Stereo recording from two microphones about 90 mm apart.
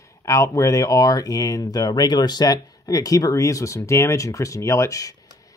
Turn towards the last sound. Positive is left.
turn(degrees=35)  # may be behind; listen again after turning